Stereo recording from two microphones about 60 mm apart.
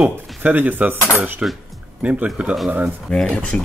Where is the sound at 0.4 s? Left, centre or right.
Right.